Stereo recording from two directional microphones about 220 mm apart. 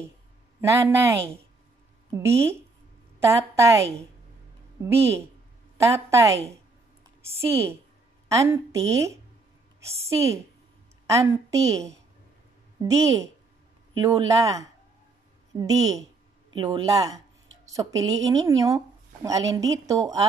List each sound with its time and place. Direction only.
0.6 s a woman's voice: 10° right (ahead or behind)
2.1 s a woman's voice: 10° right (ahead or behind)
4.8 s a woman's voice: 10° right (ahead or behind)